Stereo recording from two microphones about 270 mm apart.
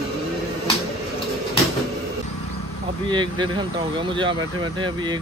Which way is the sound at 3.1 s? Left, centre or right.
Centre.